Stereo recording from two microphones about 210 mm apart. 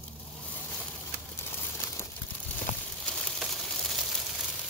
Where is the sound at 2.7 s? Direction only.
35° left (ahead or behind).